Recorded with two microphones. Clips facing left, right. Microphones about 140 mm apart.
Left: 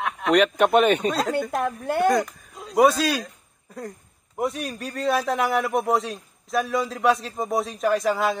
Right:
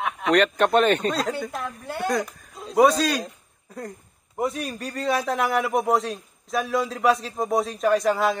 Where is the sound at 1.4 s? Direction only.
55° left (ahead or behind).